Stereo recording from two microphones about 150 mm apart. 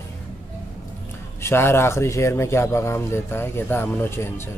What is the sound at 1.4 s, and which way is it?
Speech, 15° left (ahead or behind).